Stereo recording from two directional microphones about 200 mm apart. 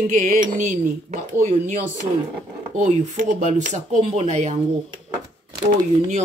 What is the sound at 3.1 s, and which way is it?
Speech, 40° right (ahead or behind).